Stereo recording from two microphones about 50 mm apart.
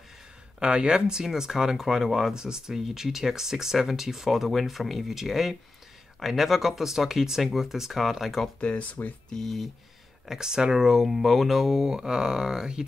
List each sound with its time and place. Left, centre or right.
0.6 s speech: centre
8.5 s speech: left
9.3 s speech: centre
10.2 s speech: centre